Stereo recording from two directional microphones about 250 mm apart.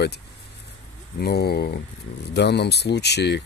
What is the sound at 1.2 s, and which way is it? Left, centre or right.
Speech, left.